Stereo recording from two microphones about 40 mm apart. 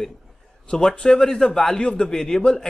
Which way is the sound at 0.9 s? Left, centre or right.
Left.